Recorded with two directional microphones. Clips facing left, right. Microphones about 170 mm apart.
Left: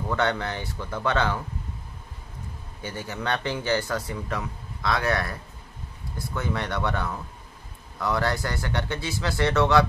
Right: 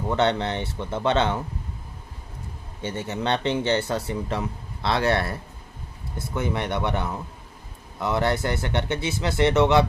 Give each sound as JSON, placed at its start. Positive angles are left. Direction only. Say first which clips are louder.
{"t": 0.1, "sound": "speech", "louder": "right 4 dB", "side_deg": -25}
{"t": 2.8, "sound": "speech", "louder": "right 4 dB", "side_deg": -25}